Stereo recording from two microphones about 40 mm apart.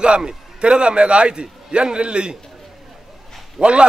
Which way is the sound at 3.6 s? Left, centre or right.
Centre.